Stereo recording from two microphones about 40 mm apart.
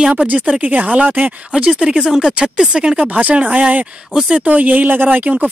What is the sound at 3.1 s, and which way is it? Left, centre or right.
Speech, right.